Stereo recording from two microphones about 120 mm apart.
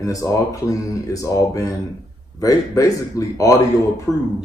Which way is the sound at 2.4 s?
30° left (ahead or behind).